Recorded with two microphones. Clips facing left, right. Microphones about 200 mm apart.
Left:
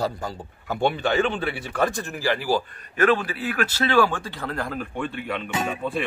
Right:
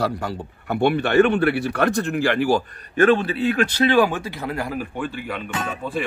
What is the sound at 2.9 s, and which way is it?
Speech, 30° right (ahead or behind).